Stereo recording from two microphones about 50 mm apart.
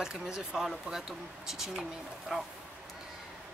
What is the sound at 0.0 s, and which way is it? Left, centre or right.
Speech, centre.